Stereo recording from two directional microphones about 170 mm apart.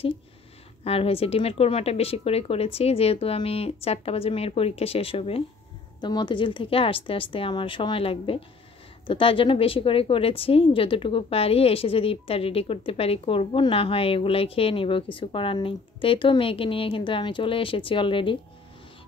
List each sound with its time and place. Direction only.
0.8 s a woman's voice: 35° left (ahead or behind)